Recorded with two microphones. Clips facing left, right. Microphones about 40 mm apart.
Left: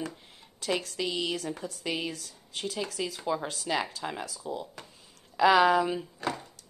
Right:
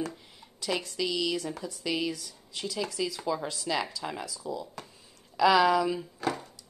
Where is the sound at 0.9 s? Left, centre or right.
Left.